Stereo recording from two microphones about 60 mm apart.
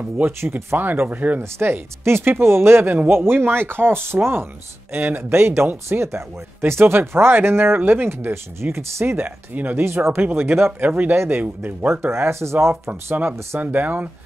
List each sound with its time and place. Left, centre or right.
0.4 s speech: right
0.7 s speech: right
1.4 s speech: right
9.8 s speech: right
11.9 s speech: right
13.6 s speech: right